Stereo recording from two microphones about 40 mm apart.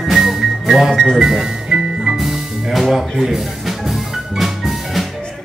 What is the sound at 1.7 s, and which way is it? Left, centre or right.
Music, right.